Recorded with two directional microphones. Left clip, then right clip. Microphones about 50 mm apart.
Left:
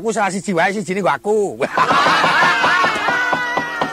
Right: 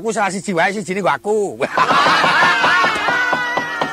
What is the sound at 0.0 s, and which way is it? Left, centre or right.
Snake, right.